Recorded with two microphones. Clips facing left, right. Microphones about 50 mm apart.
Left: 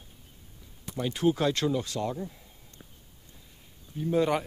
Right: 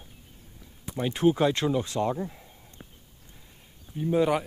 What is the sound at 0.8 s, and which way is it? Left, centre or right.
Speech, right.